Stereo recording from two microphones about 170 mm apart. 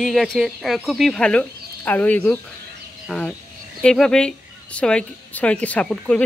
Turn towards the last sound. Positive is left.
turn(degrees=5)  # may be behind; listen again after turning